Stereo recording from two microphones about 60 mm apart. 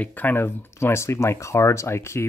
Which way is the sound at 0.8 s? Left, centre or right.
Left.